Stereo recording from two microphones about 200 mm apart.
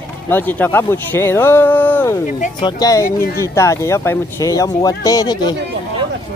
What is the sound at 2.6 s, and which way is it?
Speech, 15° left (ahead or behind).